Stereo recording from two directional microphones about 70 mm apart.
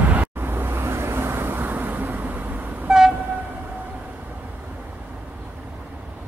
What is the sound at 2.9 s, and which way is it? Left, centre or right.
Train, centre.